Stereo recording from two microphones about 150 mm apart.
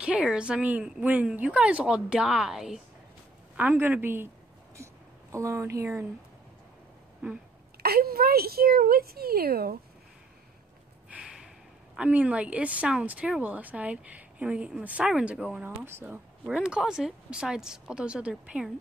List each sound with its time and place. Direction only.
0.0 s speech: 5° right (ahead or behind)
5.3 s speech: 20° right (ahead or behind)
7.8 s a woman's voice: 90° right
11.1 s snort: 10° right (ahead or behind)
11.9 s speech: 10° right (ahead or behind)